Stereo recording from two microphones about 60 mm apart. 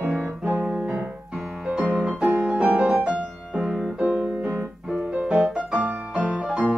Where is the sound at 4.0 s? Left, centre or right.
Right.